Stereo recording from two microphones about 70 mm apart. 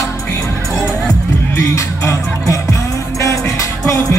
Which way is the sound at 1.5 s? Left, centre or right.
Left.